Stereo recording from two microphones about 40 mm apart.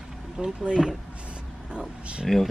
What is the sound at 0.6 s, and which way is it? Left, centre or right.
Speech, centre.